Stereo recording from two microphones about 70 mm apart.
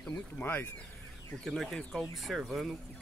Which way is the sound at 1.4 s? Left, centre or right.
Centre.